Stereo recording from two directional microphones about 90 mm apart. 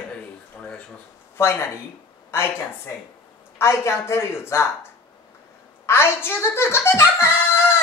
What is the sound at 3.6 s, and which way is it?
Speech, 30° left (ahead or behind).